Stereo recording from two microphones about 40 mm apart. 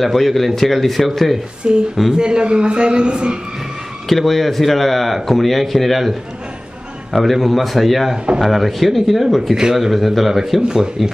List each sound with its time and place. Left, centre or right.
0.0 s a man's voice: centre
1.6 s a man's voice: right
4.1 s a man's voice: centre
9.5 s speech: centre
9.8 s a man's voice: centre